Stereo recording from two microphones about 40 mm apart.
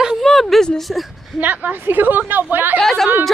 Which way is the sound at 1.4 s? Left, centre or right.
Right.